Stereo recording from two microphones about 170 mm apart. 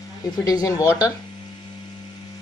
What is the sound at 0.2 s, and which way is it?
Speech, 20° left (ahead or behind).